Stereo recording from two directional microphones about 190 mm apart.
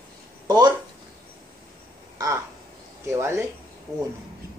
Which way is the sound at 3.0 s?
15° right (ahead or behind).